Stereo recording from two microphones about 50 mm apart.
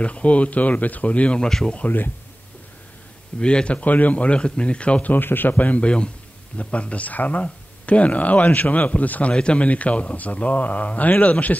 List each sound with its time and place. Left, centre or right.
0.0 s a man's voice: left
3.3 s a man's voice: centre
5.1 s a man's voice: left
9.3 s a man's voice: left